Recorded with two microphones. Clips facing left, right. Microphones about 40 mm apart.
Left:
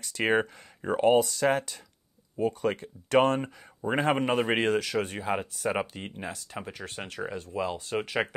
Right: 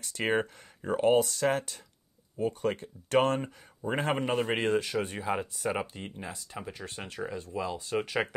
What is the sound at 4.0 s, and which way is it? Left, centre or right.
Speech, left.